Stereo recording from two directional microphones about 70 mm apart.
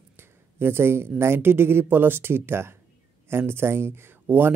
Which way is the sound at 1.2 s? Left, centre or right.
Right.